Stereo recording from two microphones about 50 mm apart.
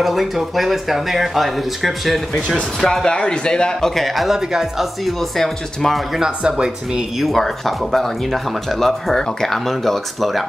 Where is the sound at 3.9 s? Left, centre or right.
Centre.